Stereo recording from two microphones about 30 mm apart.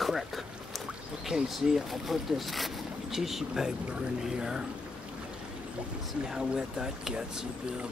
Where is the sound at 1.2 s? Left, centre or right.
Centre.